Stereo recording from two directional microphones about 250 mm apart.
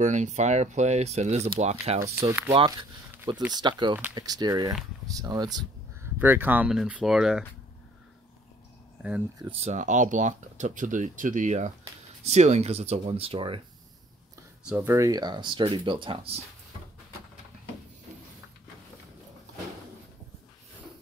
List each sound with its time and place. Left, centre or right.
0.0 s speech: right
2.1 s speech: centre
9.0 s speech: centre
9.5 s speech: right
14.7 s speech: centre